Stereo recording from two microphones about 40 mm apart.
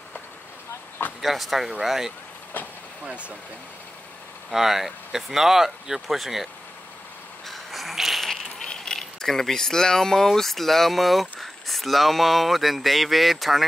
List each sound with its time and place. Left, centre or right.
1.2 s speech: centre
3.1 s speech: right
4.5 s speech: centre
7.4 s a sound: centre
8.5 s speech: centre